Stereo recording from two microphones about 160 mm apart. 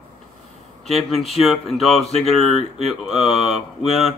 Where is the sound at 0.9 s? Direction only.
Centre (ahead or behind).